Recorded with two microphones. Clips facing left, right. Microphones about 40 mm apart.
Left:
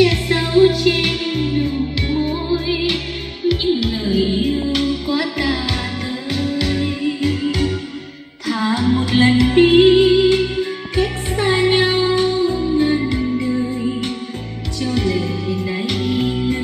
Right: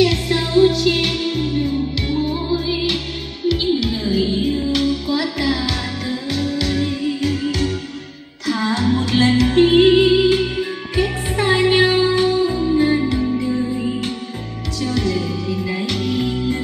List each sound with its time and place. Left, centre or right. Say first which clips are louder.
0.0 s music: left 1 dB; centre
13.7 s music: left 1 dB; centre
14.8 s music: left 1 dB; centre